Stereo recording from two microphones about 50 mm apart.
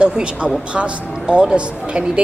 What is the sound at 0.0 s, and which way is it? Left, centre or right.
Speech, right.